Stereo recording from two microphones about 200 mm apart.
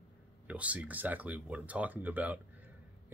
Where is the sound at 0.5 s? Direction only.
5° right (ahead or behind).